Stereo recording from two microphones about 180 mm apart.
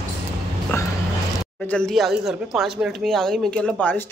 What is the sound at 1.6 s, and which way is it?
Speech, 5° left (ahead or behind).